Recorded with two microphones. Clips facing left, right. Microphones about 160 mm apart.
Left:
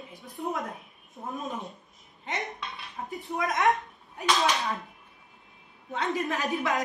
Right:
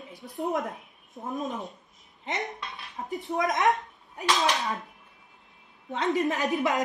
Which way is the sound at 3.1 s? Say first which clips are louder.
Right 3 dB; 20° right (ahead or behind).